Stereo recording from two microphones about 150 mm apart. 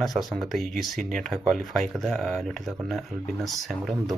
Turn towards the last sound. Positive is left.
turn(degrees=0)  # may be behind; listen again after turning